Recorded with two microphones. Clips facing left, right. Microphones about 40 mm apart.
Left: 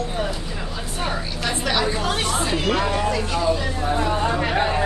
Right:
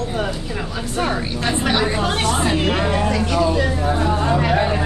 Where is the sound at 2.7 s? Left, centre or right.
Right.